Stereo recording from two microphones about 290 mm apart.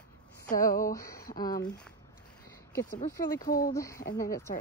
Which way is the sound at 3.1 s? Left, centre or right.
Centre.